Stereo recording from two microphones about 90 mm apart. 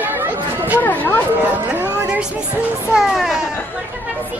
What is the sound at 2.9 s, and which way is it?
Speech, 5° right (ahead or behind).